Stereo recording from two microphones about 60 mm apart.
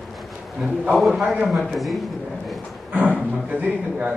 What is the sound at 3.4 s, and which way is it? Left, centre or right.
Speech, right.